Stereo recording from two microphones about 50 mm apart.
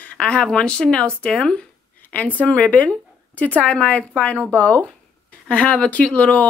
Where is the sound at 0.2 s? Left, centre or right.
Centre.